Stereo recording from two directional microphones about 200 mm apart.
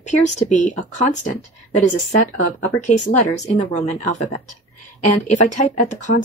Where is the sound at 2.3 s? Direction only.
35° left (ahead or behind).